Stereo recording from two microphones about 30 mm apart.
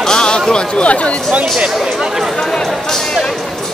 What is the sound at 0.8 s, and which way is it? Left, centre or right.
Speech, left.